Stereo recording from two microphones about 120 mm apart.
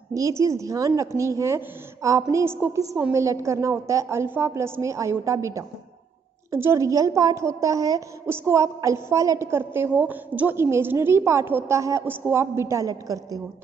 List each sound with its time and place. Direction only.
0.1 s a woman's voice: 25° right (ahead or behind)